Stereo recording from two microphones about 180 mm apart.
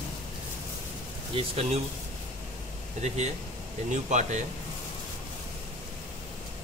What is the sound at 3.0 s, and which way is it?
Speech, 40° right (ahead or behind).